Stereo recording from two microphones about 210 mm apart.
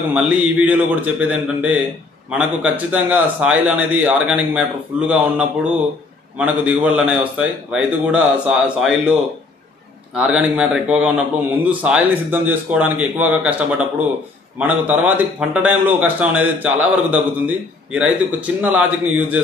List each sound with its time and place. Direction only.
0.1 s a man's voice: 5° right (ahead or behind)
10.1 s a man's voice: 5° right (ahead or behind)